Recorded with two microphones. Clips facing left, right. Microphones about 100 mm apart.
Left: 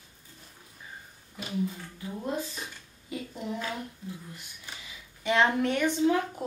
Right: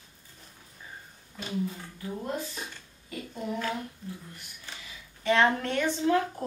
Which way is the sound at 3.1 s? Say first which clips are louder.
Left 3 dB; 20° left (ahead or behind).